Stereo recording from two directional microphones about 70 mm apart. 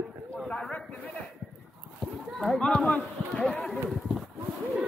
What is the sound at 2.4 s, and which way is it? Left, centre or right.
Chatter, centre.